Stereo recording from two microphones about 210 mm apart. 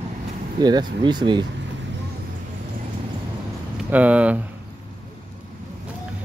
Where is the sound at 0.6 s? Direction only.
20° right (ahead or behind).